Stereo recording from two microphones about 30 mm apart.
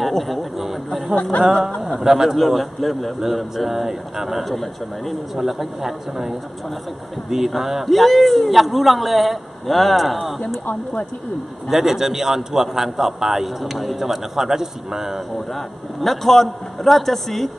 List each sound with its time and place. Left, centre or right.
0.2 s a sound: centre
2.0 s a man's voice: centre
2.3 s a man's voice: centre
3.2 s a man's voice: centre
4.5 s a man's voice: centre
11.7 s a man's voice: centre
15.3 s a man's voice: centre